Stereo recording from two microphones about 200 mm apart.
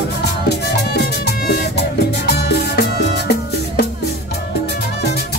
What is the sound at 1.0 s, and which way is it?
Music, 55° left (ahead or behind).